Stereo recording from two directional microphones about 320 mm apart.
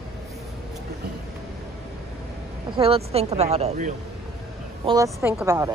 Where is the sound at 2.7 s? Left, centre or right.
Centre.